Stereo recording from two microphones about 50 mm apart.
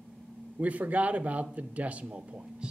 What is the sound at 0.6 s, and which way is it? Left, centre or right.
Speech, right.